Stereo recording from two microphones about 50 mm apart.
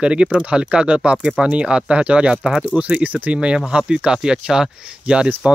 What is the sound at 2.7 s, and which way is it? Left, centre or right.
Speech, right.